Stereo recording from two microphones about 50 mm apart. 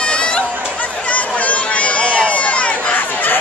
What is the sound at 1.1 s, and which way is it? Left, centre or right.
Run, left.